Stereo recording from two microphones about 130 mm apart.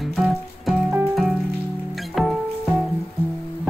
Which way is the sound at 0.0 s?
Centre (ahead or behind).